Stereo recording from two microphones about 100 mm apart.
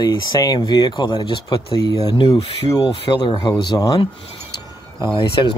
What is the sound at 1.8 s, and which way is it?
Speech, 40° left (ahead or behind).